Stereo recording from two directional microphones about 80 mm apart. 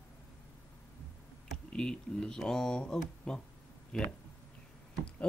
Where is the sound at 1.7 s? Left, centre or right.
Centre.